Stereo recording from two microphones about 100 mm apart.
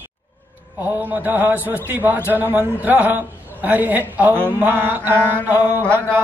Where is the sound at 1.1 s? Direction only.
15° right (ahead or behind).